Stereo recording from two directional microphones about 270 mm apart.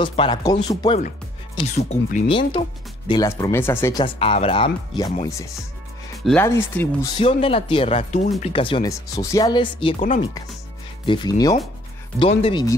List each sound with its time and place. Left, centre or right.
0.0 s speech: centre
2.2 s speech: centre
7.2 s speech: left
11.1 s speech: centre